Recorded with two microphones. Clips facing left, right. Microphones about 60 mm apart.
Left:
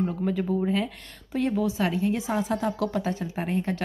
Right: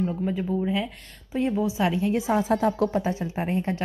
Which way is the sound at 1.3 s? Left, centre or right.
Centre.